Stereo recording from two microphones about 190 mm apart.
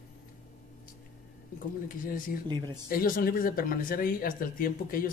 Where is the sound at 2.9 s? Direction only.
50° left (ahead or behind).